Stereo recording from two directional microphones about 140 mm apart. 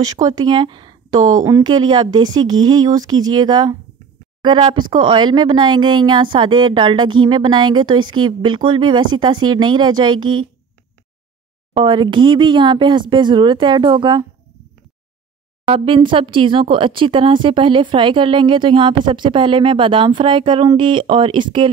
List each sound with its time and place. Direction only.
0.0 s speech: 30° right (ahead or behind)
11.7 s speech: 35° right (ahead or behind)
15.6 s speech: 40° right (ahead or behind)